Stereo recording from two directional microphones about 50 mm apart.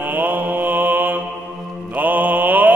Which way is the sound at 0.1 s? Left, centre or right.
Right.